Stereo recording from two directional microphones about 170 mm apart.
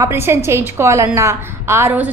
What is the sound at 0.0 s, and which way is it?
A woman's voice, 15° right (ahead or behind).